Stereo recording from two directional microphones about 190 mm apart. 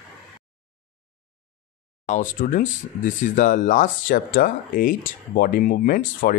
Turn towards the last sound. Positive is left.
turn(degrees=50)  # may be behind; listen again after turning